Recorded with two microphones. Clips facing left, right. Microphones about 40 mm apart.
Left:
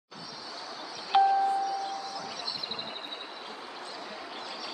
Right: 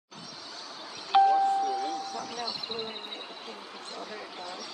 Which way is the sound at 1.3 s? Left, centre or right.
Right.